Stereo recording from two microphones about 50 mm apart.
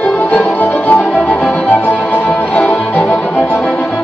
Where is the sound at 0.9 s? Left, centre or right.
Left.